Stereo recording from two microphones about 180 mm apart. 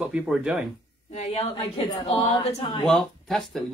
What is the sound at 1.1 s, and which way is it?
A woman's voice, 35° left (ahead or behind).